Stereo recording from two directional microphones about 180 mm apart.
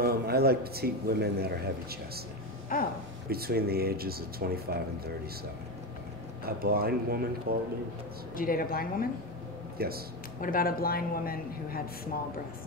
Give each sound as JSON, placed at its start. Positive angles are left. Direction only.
{"t": 0.0, "sound": "a man's voice", "side_deg": -60}
{"t": 2.7, "sound": "a woman's voice", "side_deg": 50}
{"t": 3.3, "sound": "a man's voice", "side_deg": -60}
{"t": 6.4, "sound": "a man's voice", "side_deg": -55}
{"t": 8.4, "sound": "a woman's voice", "side_deg": 55}
{"t": 9.8, "sound": "speech", "side_deg": -55}
{"t": 10.4, "sound": "a woman's voice", "side_deg": 55}